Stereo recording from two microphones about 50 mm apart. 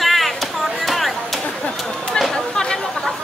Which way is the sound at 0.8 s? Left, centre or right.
Centre.